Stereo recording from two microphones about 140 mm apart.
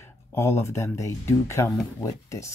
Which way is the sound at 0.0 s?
20° left (ahead or behind).